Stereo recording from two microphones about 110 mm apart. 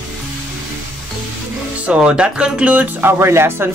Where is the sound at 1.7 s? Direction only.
10° right (ahead or behind).